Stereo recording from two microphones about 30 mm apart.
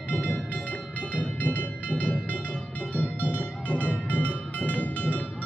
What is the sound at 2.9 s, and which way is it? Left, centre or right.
Music, left.